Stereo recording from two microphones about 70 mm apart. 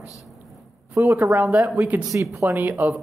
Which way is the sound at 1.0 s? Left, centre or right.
Right.